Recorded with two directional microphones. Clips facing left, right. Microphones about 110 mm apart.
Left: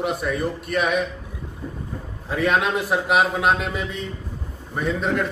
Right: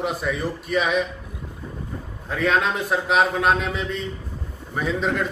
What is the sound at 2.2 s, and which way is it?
A man's voice, 5° left (ahead or behind).